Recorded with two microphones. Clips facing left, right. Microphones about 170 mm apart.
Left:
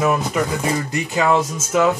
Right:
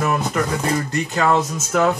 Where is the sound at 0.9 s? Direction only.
15° left (ahead or behind).